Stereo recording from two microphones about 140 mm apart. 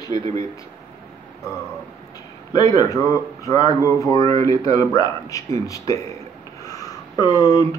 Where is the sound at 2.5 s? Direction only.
30° left (ahead or behind).